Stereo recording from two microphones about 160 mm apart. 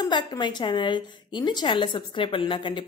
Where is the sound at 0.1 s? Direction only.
25° left (ahead or behind).